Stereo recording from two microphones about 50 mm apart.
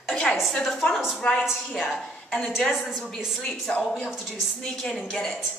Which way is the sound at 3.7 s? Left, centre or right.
Left.